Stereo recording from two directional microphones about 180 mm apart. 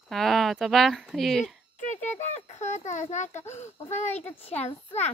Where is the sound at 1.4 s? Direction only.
40° left (ahead or behind).